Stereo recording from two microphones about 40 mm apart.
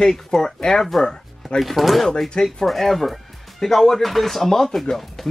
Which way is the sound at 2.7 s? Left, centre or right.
Centre.